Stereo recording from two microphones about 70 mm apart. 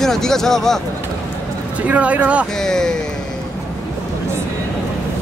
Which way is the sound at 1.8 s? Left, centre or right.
Right.